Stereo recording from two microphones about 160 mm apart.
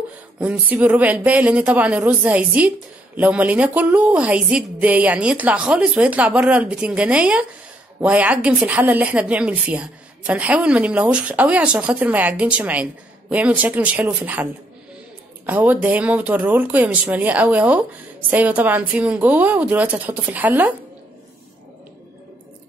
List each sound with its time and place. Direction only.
0.4 s a woman's voice: 10° right (ahead or behind)